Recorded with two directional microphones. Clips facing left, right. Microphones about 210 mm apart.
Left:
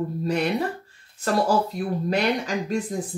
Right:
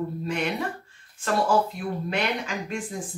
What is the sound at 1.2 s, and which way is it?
Speech, 40° left (ahead or behind).